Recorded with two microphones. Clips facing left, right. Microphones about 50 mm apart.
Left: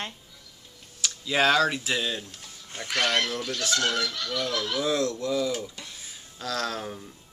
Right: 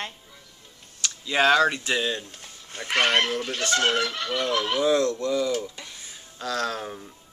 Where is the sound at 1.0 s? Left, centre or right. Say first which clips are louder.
Right 2 dB; centre.